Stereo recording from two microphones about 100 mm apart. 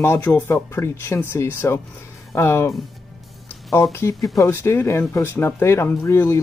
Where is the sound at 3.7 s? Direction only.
30° left (ahead or behind).